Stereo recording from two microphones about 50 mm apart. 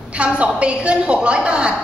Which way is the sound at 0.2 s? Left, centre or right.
Right.